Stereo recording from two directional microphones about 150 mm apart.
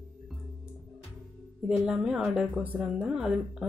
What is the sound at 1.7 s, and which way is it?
Speech, 5° right (ahead or behind).